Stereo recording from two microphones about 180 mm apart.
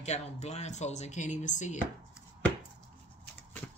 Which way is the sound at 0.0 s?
40° left (ahead or behind).